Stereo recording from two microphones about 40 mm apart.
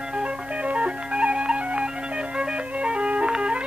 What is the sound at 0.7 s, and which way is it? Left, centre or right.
Music, right.